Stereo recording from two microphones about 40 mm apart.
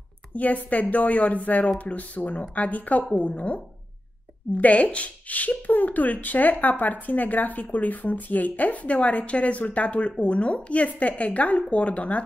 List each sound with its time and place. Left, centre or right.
0.3 s speech: left